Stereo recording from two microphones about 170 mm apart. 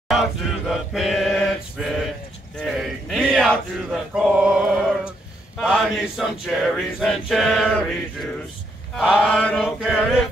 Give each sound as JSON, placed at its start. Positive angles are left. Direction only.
{"t": 0.1, "sound": "chant", "side_deg": 0}
{"t": 2.6, "sound": "male singing", "side_deg": 0}
{"t": 5.6, "sound": "a sound", "side_deg": -5}
{"t": 6.4, "sound": "male singing", "side_deg": 0}
{"t": 8.9, "sound": "mantra", "side_deg": -5}
{"t": 9.8, "sound": "male singing", "side_deg": -5}